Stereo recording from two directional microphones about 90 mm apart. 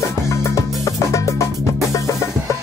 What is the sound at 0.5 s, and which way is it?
Music, 35° left (ahead or behind).